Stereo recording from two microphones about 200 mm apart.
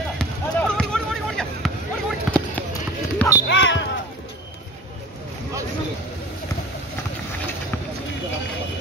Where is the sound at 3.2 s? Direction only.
15° left (ahead or behind).